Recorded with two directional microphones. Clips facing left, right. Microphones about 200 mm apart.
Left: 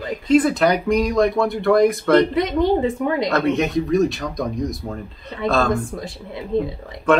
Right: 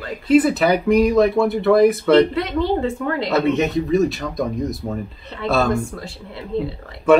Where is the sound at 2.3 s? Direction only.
15° left (ahead or behind).